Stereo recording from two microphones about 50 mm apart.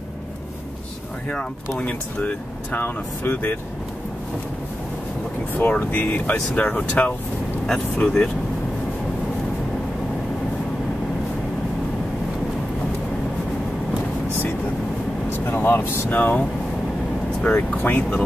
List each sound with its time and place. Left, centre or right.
1.8 s speech: left
2.8 s speech: left
5.5 s speech: left
6.3 s speech: centre
7.6 s speech: centre
15.3 s speech: left
17.8 s speech: left